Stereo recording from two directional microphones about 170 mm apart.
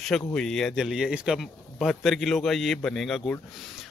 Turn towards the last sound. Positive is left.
turn(degrees=0)  # may be behind; listen again after turning